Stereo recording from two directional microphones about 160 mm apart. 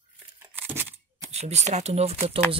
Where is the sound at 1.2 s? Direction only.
45° right (ahead or behind).